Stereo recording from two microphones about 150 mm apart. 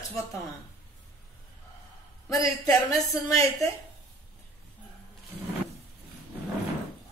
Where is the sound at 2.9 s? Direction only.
20° left (ahead or behind).